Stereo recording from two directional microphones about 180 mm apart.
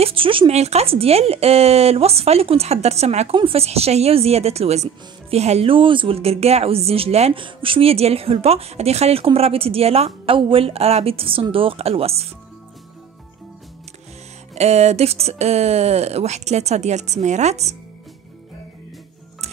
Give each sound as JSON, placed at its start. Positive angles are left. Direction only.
{"t": 0.0, "sound": "speech", "side_deg": -30}
{"t": 14.5, "sound": "speech", "side_deg": -35}